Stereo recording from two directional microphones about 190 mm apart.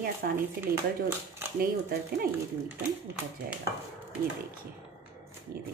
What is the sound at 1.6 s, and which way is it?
Speech, 50° right (ahead or behind).